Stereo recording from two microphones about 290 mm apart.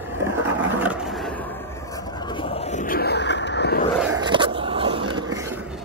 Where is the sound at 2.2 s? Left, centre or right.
Centre; by 3.8 s left.